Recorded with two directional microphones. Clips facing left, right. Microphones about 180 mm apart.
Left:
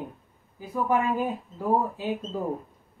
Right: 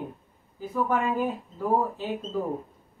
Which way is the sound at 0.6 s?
15° left (ahead or behind).